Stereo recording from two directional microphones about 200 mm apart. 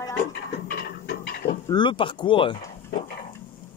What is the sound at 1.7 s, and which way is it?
Speech, 25° left (ahead or behind).